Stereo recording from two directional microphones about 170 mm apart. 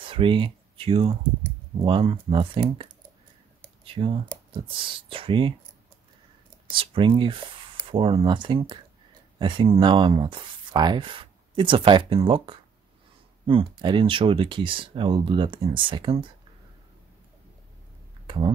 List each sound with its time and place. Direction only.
0.0 s speech: 30° right (ahead or behind)
3.6 s computer keyboard: 30° right (ahead or behind)
4.6 s speech: 30° right (ahead or behind)
6.7 s speech: 30° right (ahead or behind)
18.2 s a sound: 30° right (ahead or behind)